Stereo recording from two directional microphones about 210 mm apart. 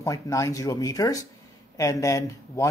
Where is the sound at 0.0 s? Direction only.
15° left (ahead or behind).